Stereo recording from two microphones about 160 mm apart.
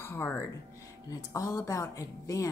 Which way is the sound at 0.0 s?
15° left (ahead or behind).